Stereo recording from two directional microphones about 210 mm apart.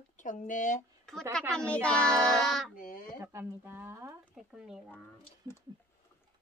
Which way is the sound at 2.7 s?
40° left (ahead or behind).